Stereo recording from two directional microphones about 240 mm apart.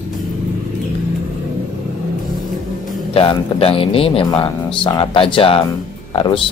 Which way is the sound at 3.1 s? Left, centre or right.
Left.